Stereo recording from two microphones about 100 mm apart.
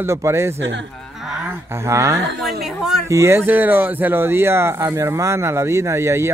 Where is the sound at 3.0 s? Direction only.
30° right (ahead or behind).